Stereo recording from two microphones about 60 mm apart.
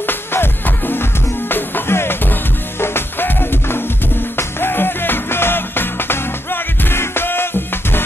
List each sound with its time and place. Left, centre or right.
0.0 s music: left